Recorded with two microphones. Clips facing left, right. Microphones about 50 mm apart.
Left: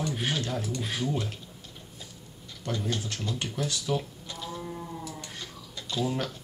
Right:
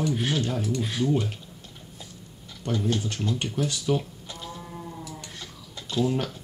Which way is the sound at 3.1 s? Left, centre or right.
Right.